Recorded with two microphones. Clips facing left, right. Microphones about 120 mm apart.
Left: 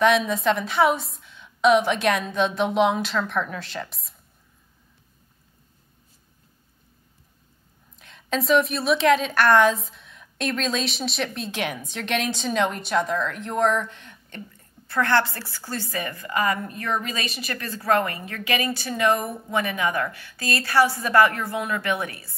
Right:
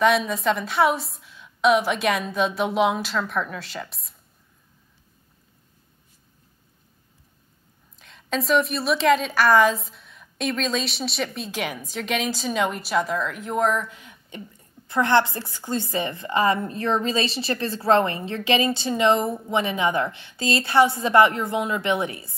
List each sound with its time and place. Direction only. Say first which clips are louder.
0.0 s a woman's voice: even; centre (ahead or behind)
8.0 s a woman's voice: even; centre (ahead or behind); by 22.3 s 20° right (ahead or behind)